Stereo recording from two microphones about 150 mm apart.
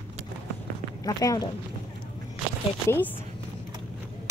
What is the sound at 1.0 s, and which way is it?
Speech, 25° left (ahead or behind).